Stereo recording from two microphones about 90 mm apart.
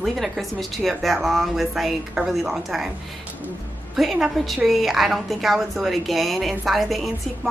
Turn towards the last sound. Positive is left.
turn(degrees=0)  # may be behind; listen again after turning